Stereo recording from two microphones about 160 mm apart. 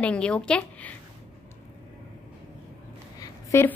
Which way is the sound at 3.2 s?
15° left (ahead or behind).